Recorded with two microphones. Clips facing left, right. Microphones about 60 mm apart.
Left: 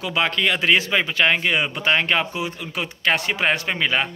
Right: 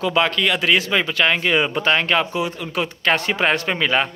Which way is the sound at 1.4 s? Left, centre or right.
Centre.